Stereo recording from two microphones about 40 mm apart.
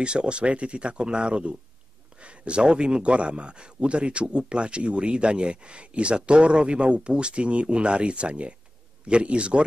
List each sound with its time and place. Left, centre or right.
0.0 s speech: right